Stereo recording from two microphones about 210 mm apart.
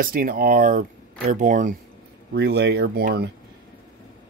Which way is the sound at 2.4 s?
50° right (ahead or behind).